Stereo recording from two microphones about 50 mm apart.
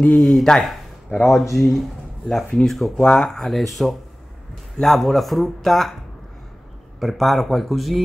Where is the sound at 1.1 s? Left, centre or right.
Left.